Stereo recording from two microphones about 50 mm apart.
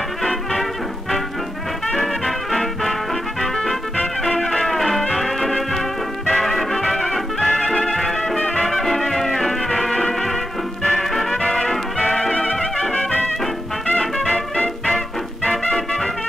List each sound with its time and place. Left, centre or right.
0.2 s music: centre
2.0 s music: centre
12.9 s music: left
15.7 s music: centre